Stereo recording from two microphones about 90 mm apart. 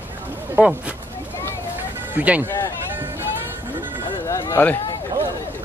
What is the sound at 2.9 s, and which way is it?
Music, 25° right (ahead or behind).